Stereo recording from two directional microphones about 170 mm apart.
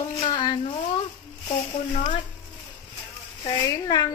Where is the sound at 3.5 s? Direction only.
20° left (ahead or behind).